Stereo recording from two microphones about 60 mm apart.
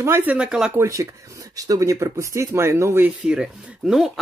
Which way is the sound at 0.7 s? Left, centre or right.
Right.